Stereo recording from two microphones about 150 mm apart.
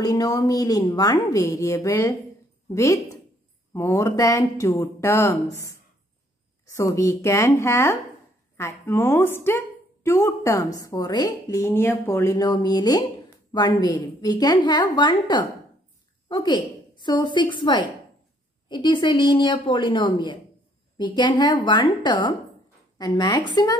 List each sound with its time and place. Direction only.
0.0 s a woman's voice: 25° left (ahead or behind)
6.7 s a woman's voice: 20° left (ahead or behind)